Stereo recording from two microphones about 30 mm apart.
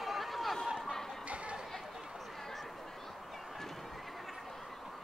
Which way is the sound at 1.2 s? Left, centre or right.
Right.